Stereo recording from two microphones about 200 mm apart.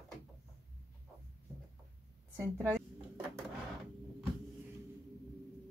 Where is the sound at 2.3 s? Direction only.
15° right (ahead or behind).